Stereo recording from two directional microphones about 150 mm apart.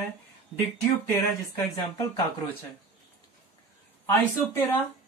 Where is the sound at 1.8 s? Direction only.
30° left (ahead or behind).